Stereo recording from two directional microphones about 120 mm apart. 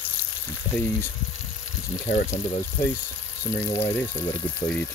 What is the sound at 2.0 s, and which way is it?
Speech, 75° left (ahead or behind).